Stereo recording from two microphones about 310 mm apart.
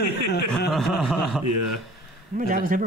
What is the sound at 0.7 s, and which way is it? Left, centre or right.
Speech, centre.